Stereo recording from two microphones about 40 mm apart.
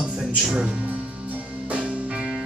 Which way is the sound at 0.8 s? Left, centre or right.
Right.